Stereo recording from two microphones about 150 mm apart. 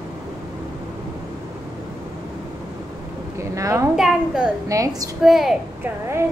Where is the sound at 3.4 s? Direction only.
20° right (ahead or behind).